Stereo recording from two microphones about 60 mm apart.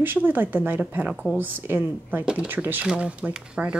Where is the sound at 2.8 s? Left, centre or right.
Centre.